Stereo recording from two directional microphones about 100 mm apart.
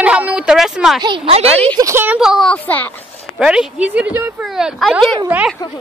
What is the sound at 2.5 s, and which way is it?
Speech, 15° left (ahead or behind).